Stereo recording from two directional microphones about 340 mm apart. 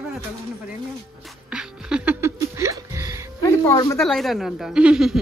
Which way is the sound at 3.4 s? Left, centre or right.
Centre.